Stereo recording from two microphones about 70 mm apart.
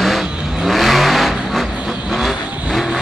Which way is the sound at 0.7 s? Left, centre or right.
Centre.